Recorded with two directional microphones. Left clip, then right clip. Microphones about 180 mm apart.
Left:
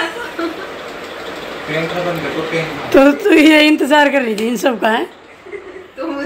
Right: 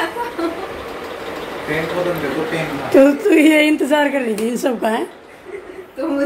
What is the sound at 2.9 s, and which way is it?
A woman's voice, 15° left (ahead or behind).